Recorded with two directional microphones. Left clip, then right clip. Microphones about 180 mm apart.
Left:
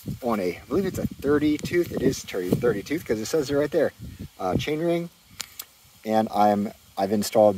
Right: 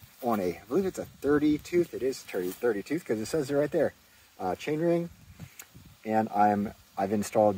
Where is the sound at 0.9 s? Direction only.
20° left (ahead or behind).